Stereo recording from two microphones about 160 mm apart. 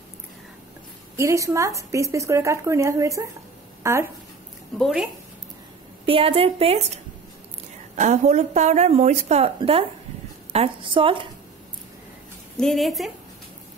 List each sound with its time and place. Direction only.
1.1 s a woman's voice: 20° right (ahead or behind)
4.7 s a woman's voice: centre (ahead or behind)
6.0 s a woman's voice: 35° right (ahead or behind)
7.9 s a woman's voice: 45° right (ahead or behind)
12.5 s a woman's voice: centre (ahead or behind)